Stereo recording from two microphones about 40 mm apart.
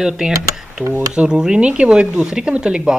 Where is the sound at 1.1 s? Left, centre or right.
Right.